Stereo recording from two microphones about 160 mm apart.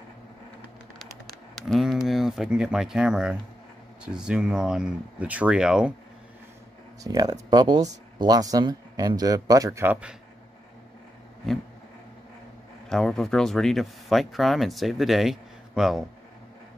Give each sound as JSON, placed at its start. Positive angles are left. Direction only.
{"t": 1.5, "sound": "a sound", "side_deg": 0}
{"t": 4.0, "sound": "speech", "side_deg": -5}
{"t": 7.0, "sound": "speech", "side_deg": -25}
{"t": 12.9, "sound": "speech", "side_deg": 0}